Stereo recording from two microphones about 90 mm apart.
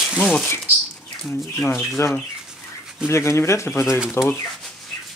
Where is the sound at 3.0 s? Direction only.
30° left (ahead or behind).